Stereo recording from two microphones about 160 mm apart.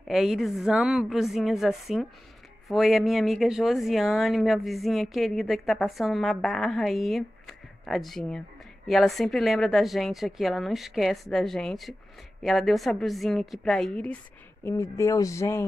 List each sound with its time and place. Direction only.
0.1 s speech: centre (ahead or behind)
14.6 s speech: 15° left (ahead or behind)